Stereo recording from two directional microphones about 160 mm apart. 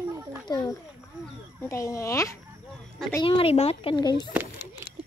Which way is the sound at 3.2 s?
35° left (ahead or behind).